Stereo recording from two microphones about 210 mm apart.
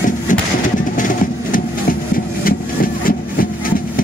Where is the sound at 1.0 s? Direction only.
40° left (ahead or behind).